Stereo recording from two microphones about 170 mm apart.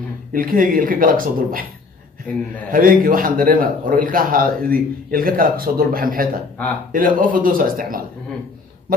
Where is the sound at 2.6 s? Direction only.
55° right (ahead or behind).